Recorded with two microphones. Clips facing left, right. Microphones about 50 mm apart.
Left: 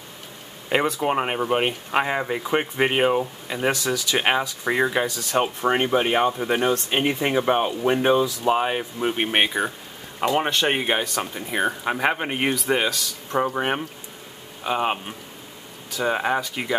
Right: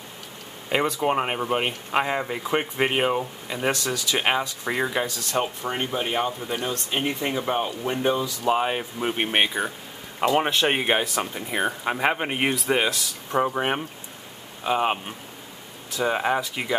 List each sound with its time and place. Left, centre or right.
0.7 s speech: centre
5.3 s speech: left
8.5 s speech: centre
10.2 s speech: centre